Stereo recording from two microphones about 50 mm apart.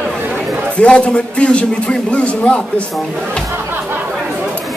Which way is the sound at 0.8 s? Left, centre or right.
Left.